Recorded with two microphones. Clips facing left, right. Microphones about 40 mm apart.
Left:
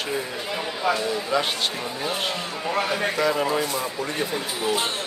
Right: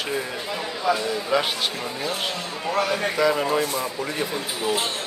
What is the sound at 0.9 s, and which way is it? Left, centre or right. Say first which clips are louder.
Speech: right 1 dB; left.